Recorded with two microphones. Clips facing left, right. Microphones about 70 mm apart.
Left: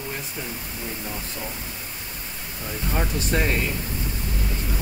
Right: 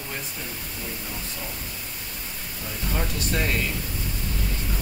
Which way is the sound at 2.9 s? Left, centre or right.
Left.